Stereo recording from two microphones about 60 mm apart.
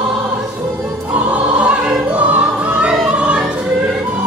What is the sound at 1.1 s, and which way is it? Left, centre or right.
Music, right.